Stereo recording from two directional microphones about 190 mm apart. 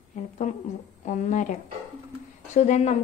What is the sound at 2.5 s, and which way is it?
Speech, 35° left (ahead or behind).